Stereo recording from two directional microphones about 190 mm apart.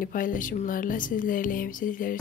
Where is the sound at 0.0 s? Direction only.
45° left (ahead or behind).